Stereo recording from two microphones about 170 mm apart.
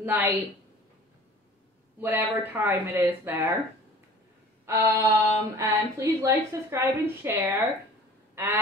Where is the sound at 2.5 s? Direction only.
10° right (ahead or behind).